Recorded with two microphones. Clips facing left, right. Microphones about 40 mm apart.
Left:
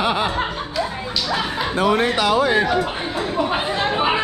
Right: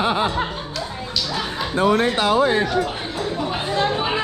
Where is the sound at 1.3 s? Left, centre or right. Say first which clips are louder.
Left 4 dB; centre.